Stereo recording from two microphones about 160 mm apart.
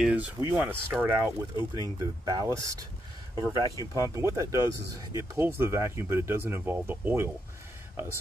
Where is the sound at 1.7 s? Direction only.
25° right (ahead or behind).